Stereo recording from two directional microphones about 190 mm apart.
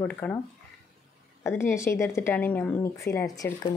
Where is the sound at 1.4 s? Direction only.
15° left (ahead or behind).